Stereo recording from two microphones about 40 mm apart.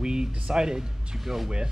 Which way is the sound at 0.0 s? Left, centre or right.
Centre.